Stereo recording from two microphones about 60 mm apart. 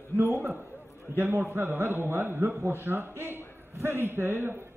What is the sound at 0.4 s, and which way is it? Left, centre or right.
A man's voice, right.